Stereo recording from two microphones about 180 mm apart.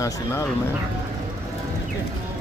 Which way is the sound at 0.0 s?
15° left (ahead or behind).